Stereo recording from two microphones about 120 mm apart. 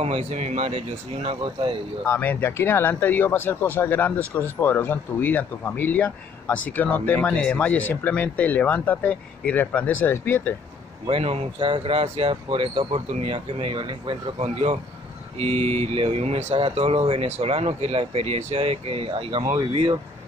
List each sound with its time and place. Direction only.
0.0 s speech: 60° right (ahead or behind)
1.4 s speech: 45° right (ahead or behind)
2.0 s speech: 20° left (ahead or behind)
11.1 s speech: 55° right (ahead or behind)
14.4 s speech: 60° right (ahead or behind); by 20.0 s 45° right (ahead or behind)